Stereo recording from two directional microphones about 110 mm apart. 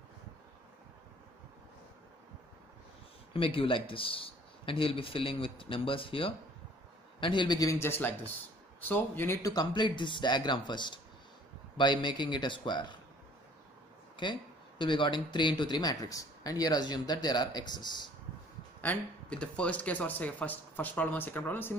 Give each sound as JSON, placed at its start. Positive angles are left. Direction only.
{"t": 3.3, "sound": "speech", "side_deg": 55}
{"t": 7.8, "sound": "speech", "side_deg": 20}
{"t": 9.5, "sound": "speech", "side_deg": 40}
{"t": 14.2, "sound": "speech", "side_deg": 45}
{"t": 18.8, "sound": "speech", "side_deg": 10}